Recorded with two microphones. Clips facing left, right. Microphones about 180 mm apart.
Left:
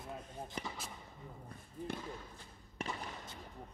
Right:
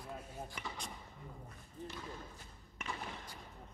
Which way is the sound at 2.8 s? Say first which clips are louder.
Left 3 dB; 35° left (ahead or behind).